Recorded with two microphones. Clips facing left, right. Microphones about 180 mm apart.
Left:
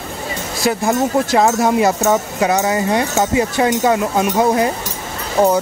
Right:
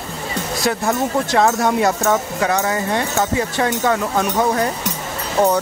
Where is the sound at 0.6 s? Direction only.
5° left (ahead or behind).